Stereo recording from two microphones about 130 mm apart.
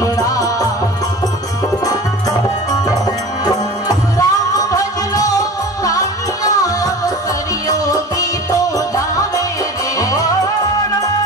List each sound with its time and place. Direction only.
0.0 s music: 25° left (ahead or behind)
3.4 s music: 30° left (ahead or behind)